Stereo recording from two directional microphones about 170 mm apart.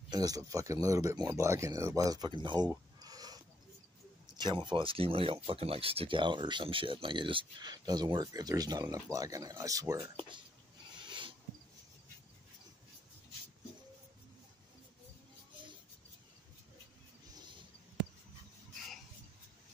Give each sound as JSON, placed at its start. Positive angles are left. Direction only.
{"t": 0.1, "sound": "speech", "side_deg": -20}
{"t": 4.4, "sound": "speech", "side_deg": -25}
{"t": 11.0, "sound": "a sound", "side_deg": -30}